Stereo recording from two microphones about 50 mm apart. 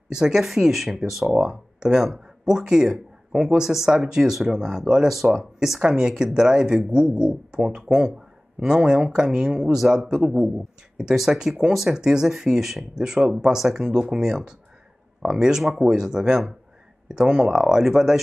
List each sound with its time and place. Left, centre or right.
0.1 s speech: centre
1.3 s speech: centre
5.8 s speech: centre